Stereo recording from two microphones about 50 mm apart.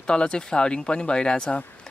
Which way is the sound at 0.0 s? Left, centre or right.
Centre.